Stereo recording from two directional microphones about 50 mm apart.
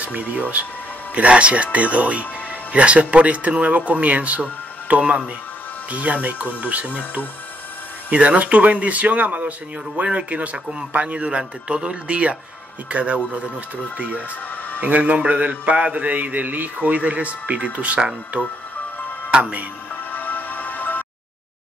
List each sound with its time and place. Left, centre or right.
0.0 s mantra: right
8.1 s mantra: right
20.1 s music: left